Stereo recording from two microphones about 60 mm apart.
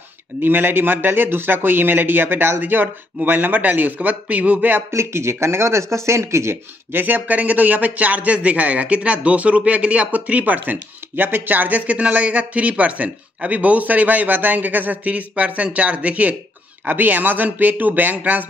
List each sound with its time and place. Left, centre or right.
0.4 s a man's voice: right
4.9 s speech: right